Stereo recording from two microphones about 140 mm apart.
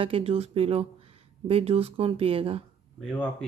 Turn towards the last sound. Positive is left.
turn(degrees=5)  # may be behind; listen again after turning